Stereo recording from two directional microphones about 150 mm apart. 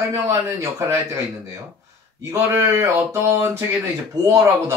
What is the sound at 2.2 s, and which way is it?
Speech, 20° right (ahead or behind).